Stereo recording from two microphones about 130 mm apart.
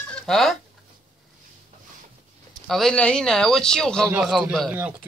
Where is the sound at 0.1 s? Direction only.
Centre (ahead or behind).